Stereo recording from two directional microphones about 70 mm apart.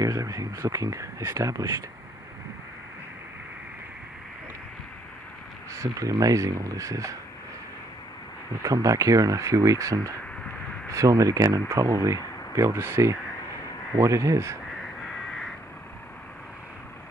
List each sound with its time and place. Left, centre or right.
0.0 s speech: right
5.7 s speech: right
8.6 s speech: right